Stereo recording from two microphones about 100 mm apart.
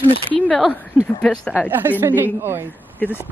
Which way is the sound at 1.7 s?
20° right (ahead or behind).